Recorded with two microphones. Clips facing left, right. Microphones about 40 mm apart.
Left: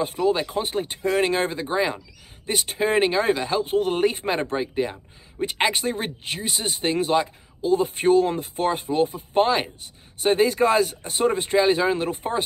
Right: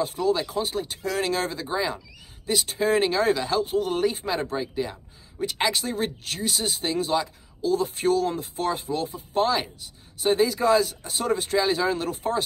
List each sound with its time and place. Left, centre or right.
0.2 s speech: left
2.9 s speech: left
3.6 s speech: left